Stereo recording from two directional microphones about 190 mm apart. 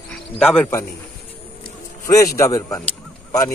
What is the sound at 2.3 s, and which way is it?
Speech, 15° left (ahead or behind).